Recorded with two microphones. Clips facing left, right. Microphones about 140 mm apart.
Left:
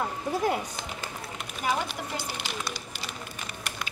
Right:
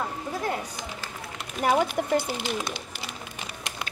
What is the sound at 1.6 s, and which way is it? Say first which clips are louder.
Speech: right 7 dB; 55° right (ahead or behind).